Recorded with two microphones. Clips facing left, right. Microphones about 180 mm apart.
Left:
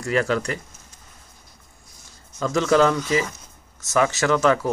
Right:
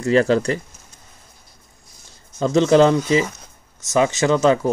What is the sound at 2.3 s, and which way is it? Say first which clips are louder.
Speech: right 5 dB; 25° right (ahead or behind).